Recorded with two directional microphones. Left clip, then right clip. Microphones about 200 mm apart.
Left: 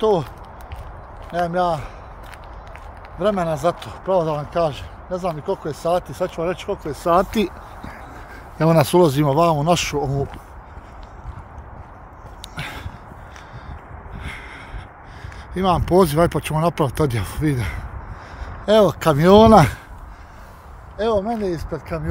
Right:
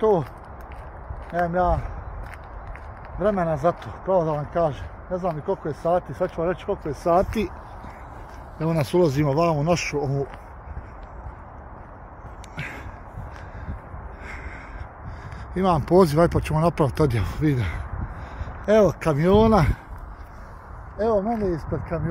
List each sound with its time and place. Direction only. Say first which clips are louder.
0.0 s speech: left 2 dB; 15° left (ahead or behind)
1.4 s speech: left 2 dB; 15° left (ahead or behind)
3.2 s speech: left 2 dB; 10° left (ahead or behind)
6.9 s speech: left 3 dB; 20° left (ahead or behind)
7.3 s speech: left 5 dB; 35° left (ahead or behind)
8.5 s speech: left 7 dB; 50° left (ahead or behind); by 10.2 s 30° left (ahead or behind)
12.5 s a sound: left 3 dB; 15° left (ahead or behind)
14.2 s gasp: left 4 dB; 10° left (ahead or behind)
15.5 s speech: left 2 dB; 5° left (ahead or behind)
18.7 s speech: left 3 dB; 20° left (ahead or behind)
19.0 s speech: left 6 dB; 30° left (ahead or behind)
19.3 s speech: left 8 dB; 45° left (ahead or behind)
21.0 s speech: left 2 dB; 5° right (ahead or behind)